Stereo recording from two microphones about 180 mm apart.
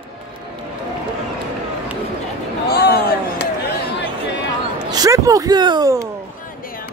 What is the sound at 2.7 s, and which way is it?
Speech, 60° left (ahead or behind).